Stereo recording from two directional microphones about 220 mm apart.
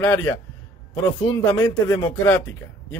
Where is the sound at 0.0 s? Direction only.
10° left (ahead or behind).